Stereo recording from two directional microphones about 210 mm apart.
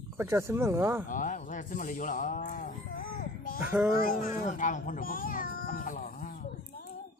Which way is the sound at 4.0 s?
45° left (ahead or behind).